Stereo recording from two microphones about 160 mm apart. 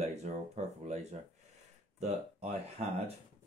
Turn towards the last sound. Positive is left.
turn(degrees=-45)  # may be behind; listen again after turning